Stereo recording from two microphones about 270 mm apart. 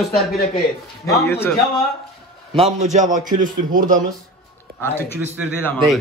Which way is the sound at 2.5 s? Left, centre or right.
Right.